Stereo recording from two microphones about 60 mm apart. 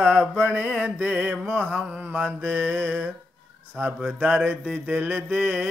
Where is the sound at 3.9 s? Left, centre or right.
Centre.